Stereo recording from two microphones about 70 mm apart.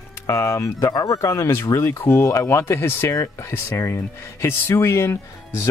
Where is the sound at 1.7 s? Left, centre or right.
Left.